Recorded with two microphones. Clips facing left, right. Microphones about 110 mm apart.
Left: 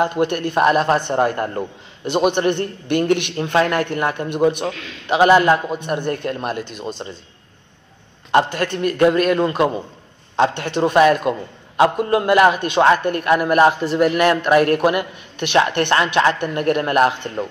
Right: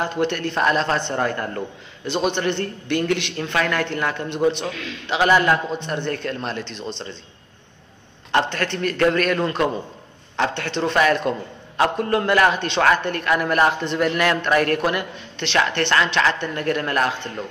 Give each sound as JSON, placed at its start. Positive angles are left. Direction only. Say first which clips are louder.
{"t": 0.0, "sound": "a man's voice", "louder": "left 4 dB", "side_deg": 15}
{"t": 1.1, "sound": "speech", "louder": "left 5 dB", "side_deg": 25}
{"t": 2.0, "sound": "a man's voice", "louder": "left 5 dB", "side_deg": 15}
{"t": 5.7, "sound": "a man's voice", "louder": "left 3 dB", "side_deg": 10}
{"t": 8.5, "sound": "a man's voice", "louder": "left 3 dB", "side_deg": 10}